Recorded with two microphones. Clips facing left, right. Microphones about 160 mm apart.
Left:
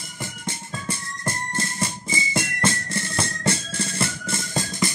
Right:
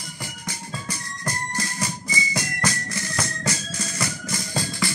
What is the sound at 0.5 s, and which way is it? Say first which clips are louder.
Music: left 2 dB; 25° left (ahead or behind).